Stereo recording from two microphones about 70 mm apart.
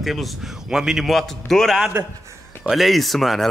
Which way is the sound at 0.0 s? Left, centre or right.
Centre.